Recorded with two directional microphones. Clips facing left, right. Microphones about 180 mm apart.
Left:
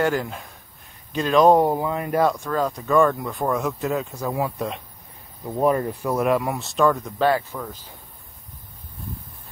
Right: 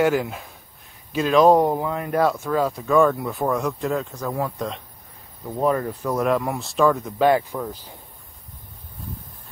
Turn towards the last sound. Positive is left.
turn(degrees=-15)  # may be behind; listen again after turning